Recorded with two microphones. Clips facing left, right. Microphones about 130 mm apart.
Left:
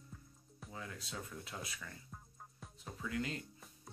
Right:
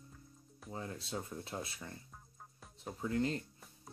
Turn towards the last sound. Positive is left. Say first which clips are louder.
# right 5 dB
turn(degrees=-35)  # may be behind; listen again after turning